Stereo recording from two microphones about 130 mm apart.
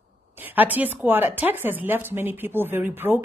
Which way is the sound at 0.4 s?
15° right (ahead or behind).